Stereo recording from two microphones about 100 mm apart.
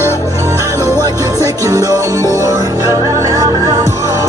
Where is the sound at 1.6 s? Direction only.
35° right (ahead or behind).